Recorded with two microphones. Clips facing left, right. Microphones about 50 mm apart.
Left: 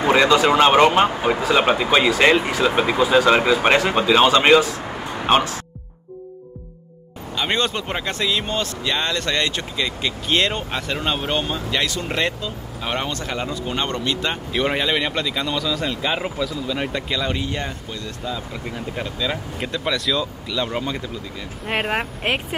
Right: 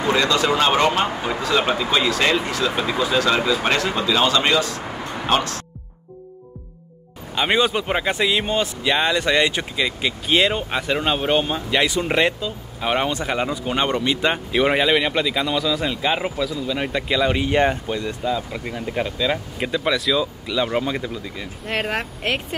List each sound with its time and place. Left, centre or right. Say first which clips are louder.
0.0 s speech: left 4 dB; left
7.3 s speech: right 3 dB; centre
17.5 s speech: right 9 dB; right; by 21.5 s centre
21.6 s speech: left 2 dB; centre